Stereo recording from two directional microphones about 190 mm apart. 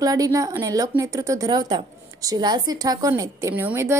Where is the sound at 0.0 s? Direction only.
20° right (ahead or behind).